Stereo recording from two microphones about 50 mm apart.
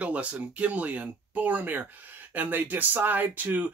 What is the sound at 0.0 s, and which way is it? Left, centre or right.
Speech, right.